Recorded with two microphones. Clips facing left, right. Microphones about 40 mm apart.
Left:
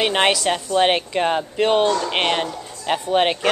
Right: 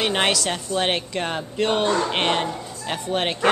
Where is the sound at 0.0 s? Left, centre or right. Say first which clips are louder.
Left 3 dB; centre.